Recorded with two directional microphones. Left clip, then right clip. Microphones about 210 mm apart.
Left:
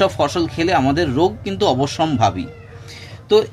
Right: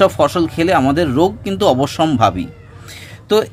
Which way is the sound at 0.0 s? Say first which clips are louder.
Right 4 dB; 25° right (ahead or behind).